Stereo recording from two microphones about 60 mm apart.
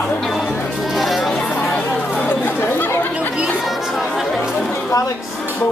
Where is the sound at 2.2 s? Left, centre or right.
Left.